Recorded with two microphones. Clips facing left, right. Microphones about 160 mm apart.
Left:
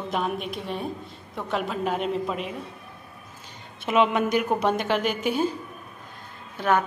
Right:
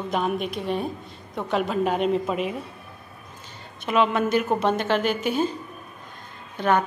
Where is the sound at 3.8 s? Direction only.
20° left (ahead or behind).